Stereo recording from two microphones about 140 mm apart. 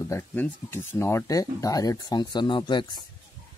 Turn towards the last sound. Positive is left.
turn(degrees=30)  # may be behind; listen again after turning